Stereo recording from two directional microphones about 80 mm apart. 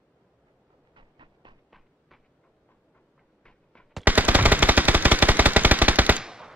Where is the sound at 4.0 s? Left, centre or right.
Right.